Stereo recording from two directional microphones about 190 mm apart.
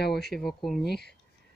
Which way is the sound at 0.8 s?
60° left (ahead or behind).